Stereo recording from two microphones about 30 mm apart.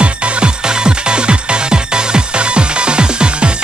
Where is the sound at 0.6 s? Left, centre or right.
Right.